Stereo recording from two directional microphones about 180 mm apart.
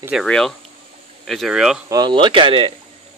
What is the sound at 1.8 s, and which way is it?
Speech, 20° right (ahead or behind).